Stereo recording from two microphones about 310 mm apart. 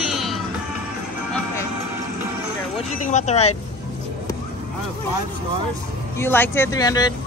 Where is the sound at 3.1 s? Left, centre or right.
Left.